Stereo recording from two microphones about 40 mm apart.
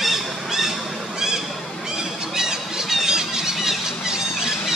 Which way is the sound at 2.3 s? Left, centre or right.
Centre.